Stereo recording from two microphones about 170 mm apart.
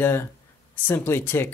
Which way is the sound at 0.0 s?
15° left (ahead or behind).